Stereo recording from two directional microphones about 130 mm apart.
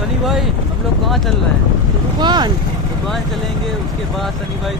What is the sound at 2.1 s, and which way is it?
Speech, 35° right (ahead or behind).